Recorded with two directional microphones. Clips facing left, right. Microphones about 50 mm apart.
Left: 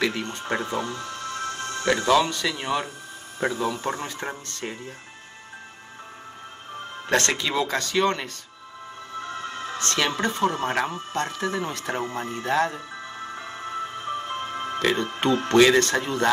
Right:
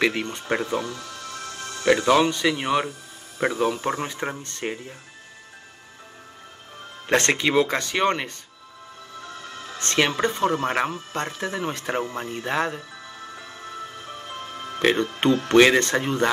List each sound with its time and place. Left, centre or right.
0.0 s speech: right
0.6 s music: left
2.0 s speech: right
7.1 s speech: right
9.2 s music: left
9.8 s speech: right
13.4 s music: left
14.8 s speech: right